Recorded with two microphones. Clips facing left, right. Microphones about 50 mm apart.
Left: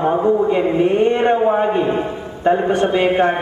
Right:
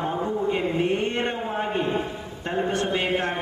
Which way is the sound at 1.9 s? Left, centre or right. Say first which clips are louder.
Left 7 dB; left.